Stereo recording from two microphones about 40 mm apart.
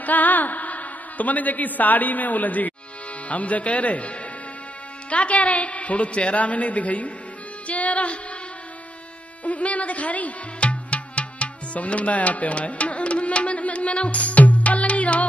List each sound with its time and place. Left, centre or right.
0.0 s a woman's voice: left
7.6 s music: left
9.4 s music: left